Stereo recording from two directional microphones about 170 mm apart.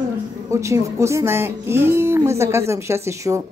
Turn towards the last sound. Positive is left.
turn(degrees=-15)  # may be behind; listen again after turning